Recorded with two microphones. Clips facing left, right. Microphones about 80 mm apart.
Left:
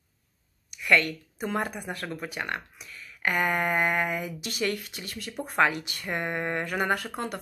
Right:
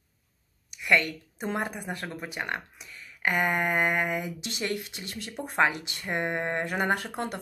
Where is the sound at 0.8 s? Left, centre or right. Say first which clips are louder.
Left 1 dB; right.